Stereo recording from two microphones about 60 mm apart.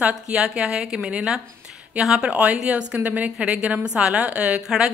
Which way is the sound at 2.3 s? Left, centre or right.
Centre.